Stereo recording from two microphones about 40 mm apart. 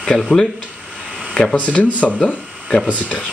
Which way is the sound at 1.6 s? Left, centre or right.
Left.